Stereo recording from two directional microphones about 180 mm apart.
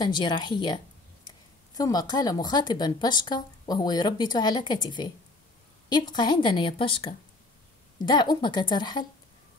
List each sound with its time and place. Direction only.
0.0 s speech: 25° left (ahead or behind)